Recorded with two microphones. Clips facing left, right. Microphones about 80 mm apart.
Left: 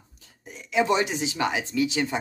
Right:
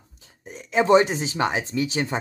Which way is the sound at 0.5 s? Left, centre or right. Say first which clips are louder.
Right 5 dB; right.